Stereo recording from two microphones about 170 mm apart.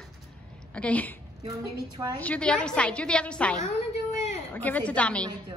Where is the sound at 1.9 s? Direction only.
20° right (ahead or behind).